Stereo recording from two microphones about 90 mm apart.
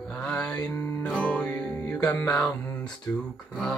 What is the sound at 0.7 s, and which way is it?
Music, 30° left (ahead or behind).